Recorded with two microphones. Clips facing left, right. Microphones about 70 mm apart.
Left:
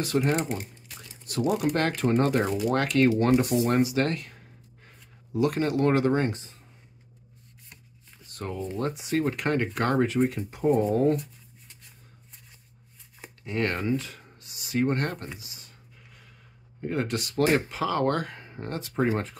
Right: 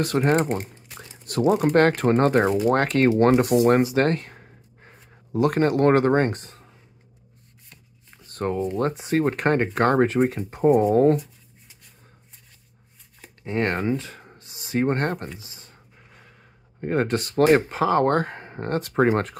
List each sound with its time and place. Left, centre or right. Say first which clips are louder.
0.0 s speech: right 5 dB; right
8.3 s speech: right 8 dB; right
13.4 s speech: right 4 dB; right
15.3 s a sound: right 3 dB; right
16.8 s speech: right 6 dB; right